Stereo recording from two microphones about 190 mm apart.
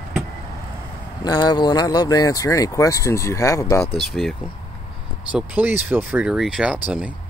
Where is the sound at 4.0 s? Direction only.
Centre (ahead or behind).